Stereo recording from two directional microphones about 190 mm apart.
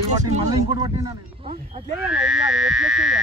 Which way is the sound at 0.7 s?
20° right (ahead or behind).